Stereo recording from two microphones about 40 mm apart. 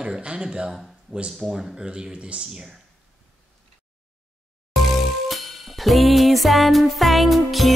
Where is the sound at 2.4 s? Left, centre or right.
Centre.